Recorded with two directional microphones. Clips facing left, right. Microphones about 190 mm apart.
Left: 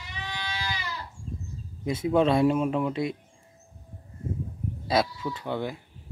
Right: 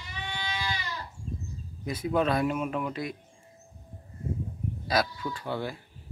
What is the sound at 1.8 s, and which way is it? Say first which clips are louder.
Speech: left 4 dB; 25° left (ahead or behind).